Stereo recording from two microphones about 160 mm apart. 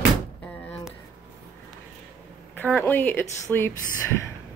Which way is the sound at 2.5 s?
10° left (ahead or behind).